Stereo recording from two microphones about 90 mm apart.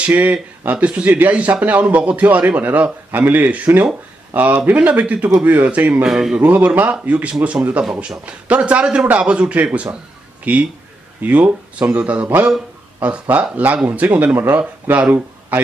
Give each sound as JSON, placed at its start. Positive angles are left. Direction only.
{"t": 0.0, "sound": "speech", "side_deg": -15}
{"t": 6.0, "sound": "speech", "side_deg": -5}
{"t": 6.4, "sound": "speech", "side_deg": -20}